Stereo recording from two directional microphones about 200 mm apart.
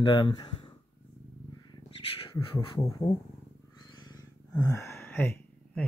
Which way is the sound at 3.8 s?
20° left (ahead or behind).